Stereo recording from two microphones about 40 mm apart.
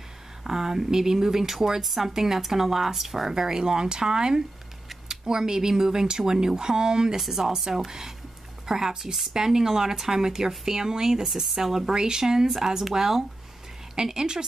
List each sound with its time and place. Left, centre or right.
0.4 s speech: centre